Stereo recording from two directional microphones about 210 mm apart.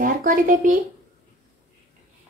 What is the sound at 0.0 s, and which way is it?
Speech, 40° right (ahead or behind).